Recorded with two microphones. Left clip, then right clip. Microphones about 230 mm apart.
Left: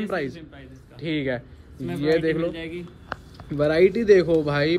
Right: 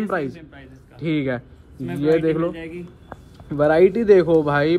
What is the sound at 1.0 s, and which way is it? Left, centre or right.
Speech, centre.